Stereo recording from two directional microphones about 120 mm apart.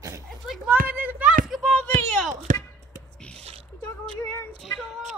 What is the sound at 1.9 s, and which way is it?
Speech, 90° right.